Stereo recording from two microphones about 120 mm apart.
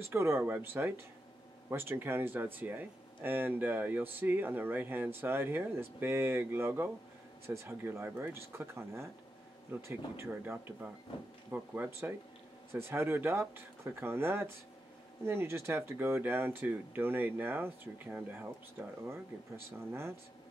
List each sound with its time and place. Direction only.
0.0 s speech: 20° right (ahead or behind)